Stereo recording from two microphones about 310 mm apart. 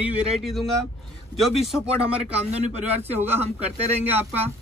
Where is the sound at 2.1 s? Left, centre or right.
Centre.